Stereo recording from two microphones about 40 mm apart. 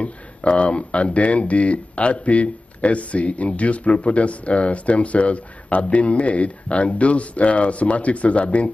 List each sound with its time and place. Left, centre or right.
0.0 s speech: left